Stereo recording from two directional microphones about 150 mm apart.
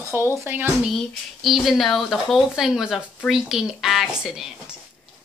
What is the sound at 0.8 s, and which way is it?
Speech, centre (ahead or behind).